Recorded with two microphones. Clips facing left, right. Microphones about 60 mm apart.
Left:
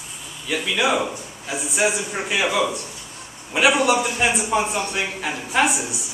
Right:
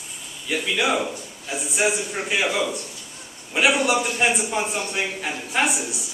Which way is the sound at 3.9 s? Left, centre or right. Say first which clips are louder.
Left 1 dB; centre.